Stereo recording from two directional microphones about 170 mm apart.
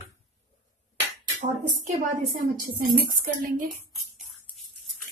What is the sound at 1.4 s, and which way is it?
A woman's voice, 50° right (ahead or behind).